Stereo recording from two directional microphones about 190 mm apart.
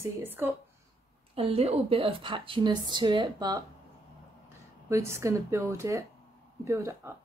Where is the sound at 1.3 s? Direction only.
30° right (ahead or behind).